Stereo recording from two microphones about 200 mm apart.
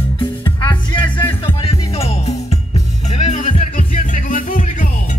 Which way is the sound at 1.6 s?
30° left (ahead or behind).